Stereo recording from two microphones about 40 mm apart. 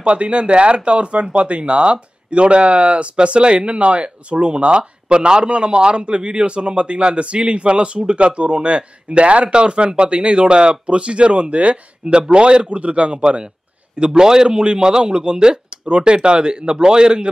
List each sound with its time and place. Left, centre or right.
0.0 s speech: right